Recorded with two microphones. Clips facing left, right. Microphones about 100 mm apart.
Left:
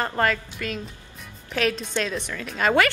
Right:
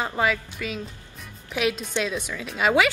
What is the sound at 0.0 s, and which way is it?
A woman's voice, 5° right (ahead or behind).